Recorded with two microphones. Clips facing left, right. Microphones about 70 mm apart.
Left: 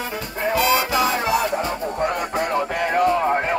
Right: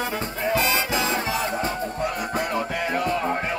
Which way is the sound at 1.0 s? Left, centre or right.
Left.